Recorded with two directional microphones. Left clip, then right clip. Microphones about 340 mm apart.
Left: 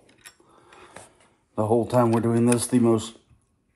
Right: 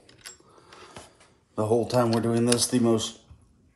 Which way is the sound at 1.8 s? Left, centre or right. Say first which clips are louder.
Left 3 dB; left.